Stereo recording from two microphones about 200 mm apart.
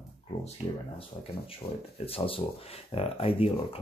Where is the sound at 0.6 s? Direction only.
10° right (ahead or behind).